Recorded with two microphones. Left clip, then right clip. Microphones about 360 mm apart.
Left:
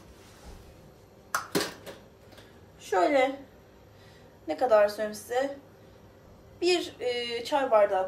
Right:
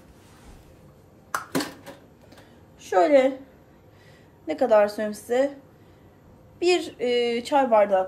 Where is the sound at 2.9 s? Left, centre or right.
Centre.